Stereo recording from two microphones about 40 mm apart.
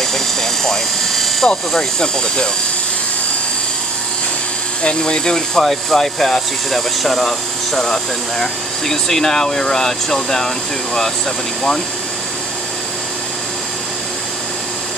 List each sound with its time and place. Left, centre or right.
0.0 s helicopter: centre
1.7 s speech: centre
4.8 s speech: centre